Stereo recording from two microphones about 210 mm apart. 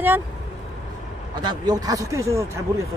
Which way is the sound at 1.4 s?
20° right (ahead or behind).